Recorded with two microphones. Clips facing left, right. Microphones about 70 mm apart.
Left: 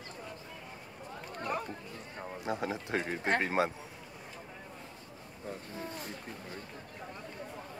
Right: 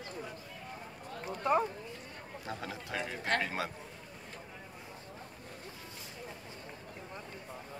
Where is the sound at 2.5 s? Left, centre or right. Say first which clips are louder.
Left 6 dB; left.